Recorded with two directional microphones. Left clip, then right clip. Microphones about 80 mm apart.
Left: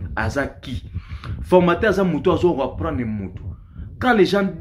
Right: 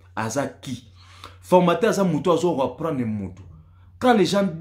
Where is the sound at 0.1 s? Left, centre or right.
Right.